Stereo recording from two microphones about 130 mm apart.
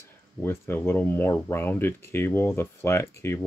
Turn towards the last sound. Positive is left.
turn(degrees=20)  # may be behind; listen again after turning